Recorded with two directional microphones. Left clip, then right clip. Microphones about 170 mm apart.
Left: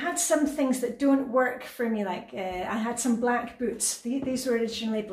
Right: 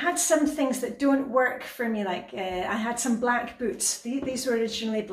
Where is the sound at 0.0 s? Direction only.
10° left (ahead or behind).